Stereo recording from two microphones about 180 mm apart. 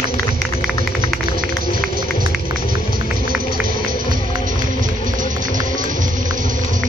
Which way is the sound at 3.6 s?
50° right (ahead or behind).